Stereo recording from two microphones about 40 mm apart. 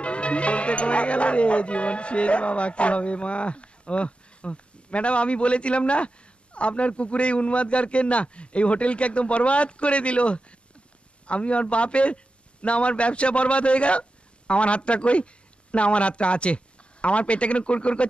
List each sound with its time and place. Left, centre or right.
0.0 s a man's voice: left